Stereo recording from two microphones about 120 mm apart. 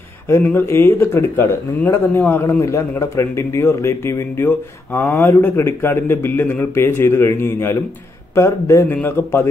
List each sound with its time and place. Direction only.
0.3 s speech: 20° left (ahead or behind)